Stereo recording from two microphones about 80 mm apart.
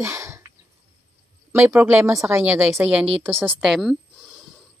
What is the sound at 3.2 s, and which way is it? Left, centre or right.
Speech, right.